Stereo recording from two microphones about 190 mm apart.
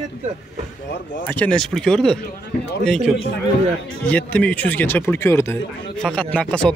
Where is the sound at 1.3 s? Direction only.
5° left (ahead or behind).